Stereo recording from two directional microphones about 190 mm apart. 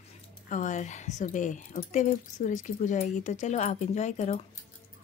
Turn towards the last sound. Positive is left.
turn(degrees=40)  # may be behind; listen again after turning